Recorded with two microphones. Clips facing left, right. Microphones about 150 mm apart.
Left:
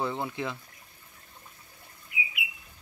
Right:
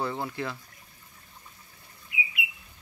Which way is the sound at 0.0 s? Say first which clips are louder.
Even; 20° left (ahead or behind).